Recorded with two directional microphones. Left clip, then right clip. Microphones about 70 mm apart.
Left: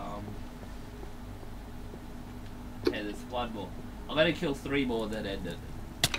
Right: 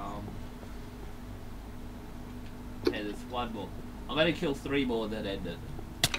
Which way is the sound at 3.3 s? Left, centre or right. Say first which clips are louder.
Left 1 dB; left.